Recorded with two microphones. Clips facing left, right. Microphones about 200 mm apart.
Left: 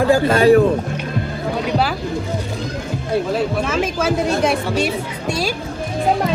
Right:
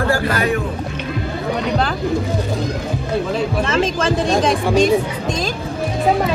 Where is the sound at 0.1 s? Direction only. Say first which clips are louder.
Left 6 dB; 30° left (ahead or behind).